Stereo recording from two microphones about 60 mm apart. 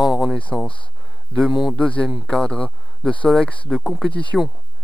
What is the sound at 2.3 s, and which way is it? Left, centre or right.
Speech, centre.